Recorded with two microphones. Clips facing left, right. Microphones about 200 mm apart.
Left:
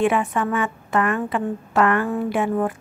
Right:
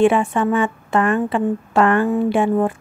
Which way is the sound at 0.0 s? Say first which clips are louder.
Right 5 dB; 30° right (ahead or behind).